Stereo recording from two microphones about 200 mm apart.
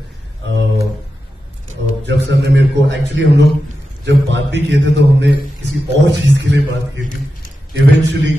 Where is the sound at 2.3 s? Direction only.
60° right (ahead or behind).